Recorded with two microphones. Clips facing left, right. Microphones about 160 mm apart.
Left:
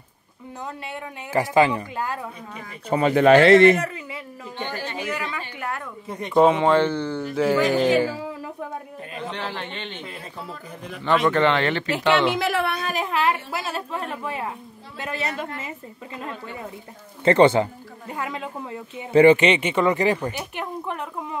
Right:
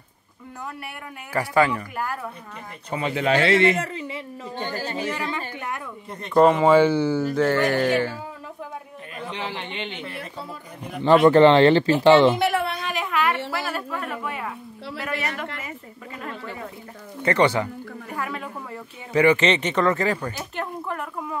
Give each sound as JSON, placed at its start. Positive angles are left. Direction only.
{"t": 0.8, "sound": "a woman's voice", "side_deg": 20}
{"t": 2.9, "sound": "speech", "side_deg": 45}
{"t": 3.8, "sound": "speech", "side_deg": -30}
{"t": 4.6, "sound": "speech", "side_deg": -40}
{"t": 6.0, "sound": "speech", "side_deg": 10}
{"t": 7.5, "sound": "speech", "side_deg": 15}
{"t": 9.3, "sound": "a man's voice", "side_deg": -15}
{"t": 11.1, "sound": "speech", "side_deg": -30}
{"t": 12.4, "sound": "a sound", "side_deg": 90}
{"t": 12.8, "sound": "a sound", "side_deg": 35}
{"t": 13.5, "sound": "a woman's voice", "side_deg": 25}
{"t": 17.2, "sound": "a woman's voice", "side_deg": 25}
{"t": 19.4, "sound": "speech", "side_deg": 10}